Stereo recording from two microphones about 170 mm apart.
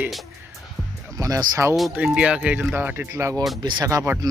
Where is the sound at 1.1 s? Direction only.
20° right (ahead or behind).